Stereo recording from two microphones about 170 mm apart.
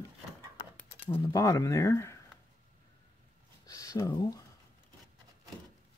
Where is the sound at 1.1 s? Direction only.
20° left (ahead or behind).